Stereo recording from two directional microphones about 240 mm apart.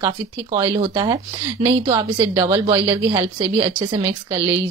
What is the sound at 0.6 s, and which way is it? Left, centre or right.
A woman's voice, centre.